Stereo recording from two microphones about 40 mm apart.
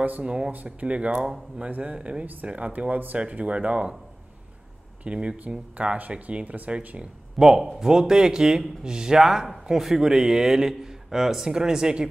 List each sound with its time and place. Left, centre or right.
0.2 s speech: right
3.2 s speech: right
5.0 s speech: right
5.9 s speech: right
7.3 s a man's voice: centre
9.2 s a man's voice: centre